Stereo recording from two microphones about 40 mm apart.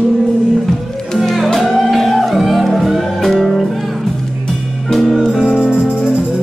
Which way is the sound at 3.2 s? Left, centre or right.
Centre.